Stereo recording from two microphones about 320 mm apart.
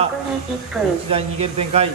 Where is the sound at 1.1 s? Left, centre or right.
Centre.